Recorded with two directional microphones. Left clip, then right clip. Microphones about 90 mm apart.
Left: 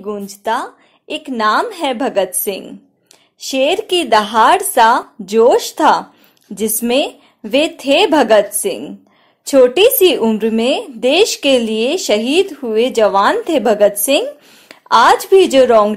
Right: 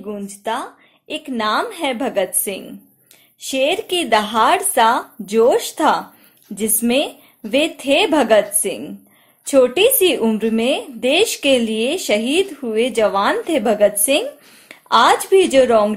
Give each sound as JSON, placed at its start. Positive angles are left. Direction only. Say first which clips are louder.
{"t": 0.0, "sound": "a woman's voice", "louder": "left 5 dB", "side_deg": 35}